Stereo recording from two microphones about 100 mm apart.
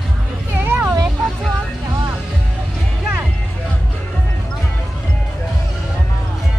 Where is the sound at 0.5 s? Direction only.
20° right (ahead or behind).